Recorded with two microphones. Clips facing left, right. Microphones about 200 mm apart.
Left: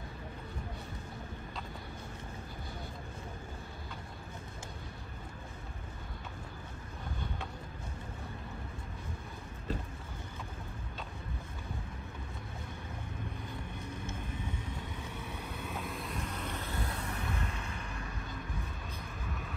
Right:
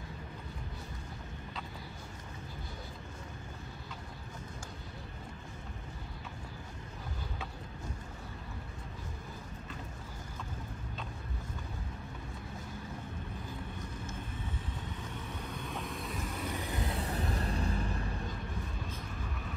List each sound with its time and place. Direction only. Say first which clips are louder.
15.2 s vehicle: even; 10° left (ahead or behind); by 16.9 s 15° right (ahead or behind)
17.0 s vehicle: right 3 dB; 35° right (ahead or behind)